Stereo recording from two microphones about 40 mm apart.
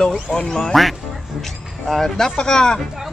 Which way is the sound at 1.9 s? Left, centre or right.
Centre.